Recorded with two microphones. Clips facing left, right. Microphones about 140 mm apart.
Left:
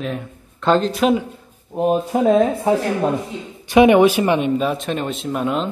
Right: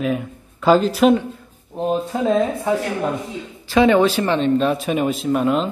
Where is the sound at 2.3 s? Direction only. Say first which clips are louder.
Left 2 dB; 30° left (ahead or behind).